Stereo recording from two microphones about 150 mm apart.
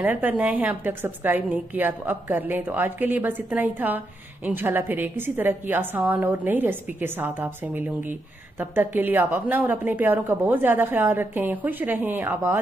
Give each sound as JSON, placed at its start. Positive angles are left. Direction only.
{"t": 0.0, "sound": "a woman's voice", "side_deg": -10}